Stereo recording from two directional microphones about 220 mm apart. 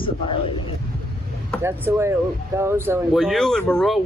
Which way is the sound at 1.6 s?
10° right (ahead or behind).